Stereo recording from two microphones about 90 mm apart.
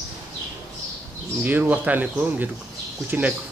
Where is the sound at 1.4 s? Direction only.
20° right (ahead or behind).